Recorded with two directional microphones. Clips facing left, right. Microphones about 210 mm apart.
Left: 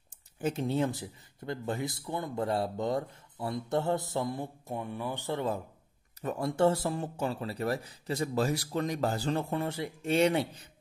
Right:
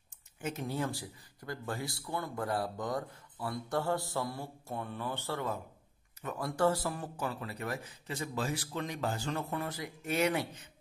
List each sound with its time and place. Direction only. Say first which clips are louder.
0.4 s speech: left 6 dB; 30° left (ahead or behind)
6.2 s speech: left 4 dB; 25° left (ahead or behind)